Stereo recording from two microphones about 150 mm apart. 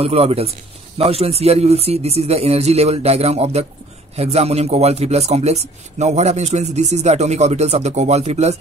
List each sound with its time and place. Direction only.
0.0 s a man's voice: 40° right (ahead or behind)